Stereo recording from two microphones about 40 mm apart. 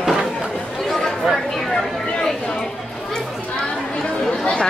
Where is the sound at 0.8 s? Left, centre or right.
Centre.